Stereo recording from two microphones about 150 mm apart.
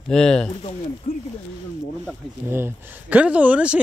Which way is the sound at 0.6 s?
40° left (ahead or behind).